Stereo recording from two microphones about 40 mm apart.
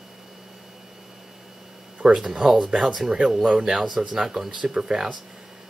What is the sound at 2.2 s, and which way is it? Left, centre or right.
Speech, centre.